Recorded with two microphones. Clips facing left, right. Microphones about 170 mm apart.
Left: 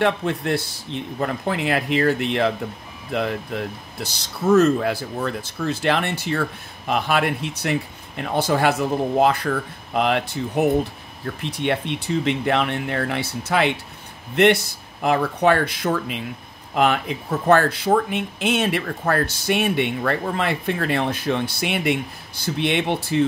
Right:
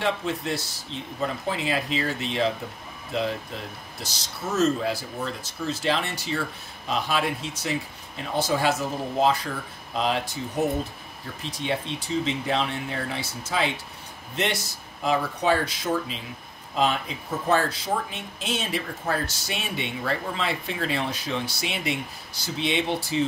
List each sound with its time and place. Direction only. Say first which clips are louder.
0.0 s speech: left 6 dB; 60° left (ahead or behind)